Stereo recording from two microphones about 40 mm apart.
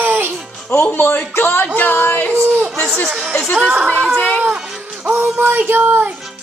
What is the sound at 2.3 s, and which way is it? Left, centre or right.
Speech, right.